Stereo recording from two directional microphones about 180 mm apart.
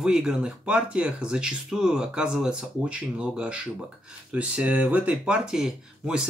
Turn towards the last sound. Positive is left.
turn(degrees=-5)  # may be behind; listen again after turning